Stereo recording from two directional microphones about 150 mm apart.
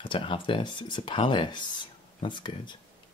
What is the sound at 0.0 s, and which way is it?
Speech, 35° left (ahead or behind).